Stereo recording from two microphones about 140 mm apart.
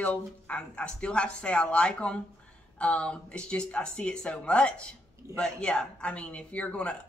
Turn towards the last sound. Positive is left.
turn(degrees=10)  # may be behind; listen again after turning